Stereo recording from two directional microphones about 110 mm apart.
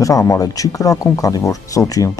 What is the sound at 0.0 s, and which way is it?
Speech, 30° left (ahead or behind).